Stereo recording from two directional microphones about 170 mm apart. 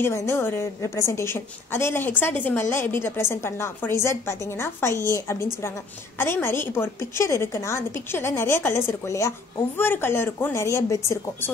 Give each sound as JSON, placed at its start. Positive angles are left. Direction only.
{"t": 0.0, "sound": "a woman's voice", "side_deg": 15}